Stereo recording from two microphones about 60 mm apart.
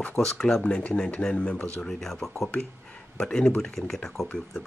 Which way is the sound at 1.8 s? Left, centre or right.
Centre.